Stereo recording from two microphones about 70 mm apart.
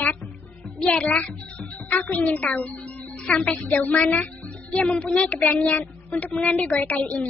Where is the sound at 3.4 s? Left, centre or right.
Centre.